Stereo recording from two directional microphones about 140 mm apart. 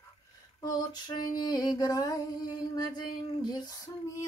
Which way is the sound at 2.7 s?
30° left (ahead or behind).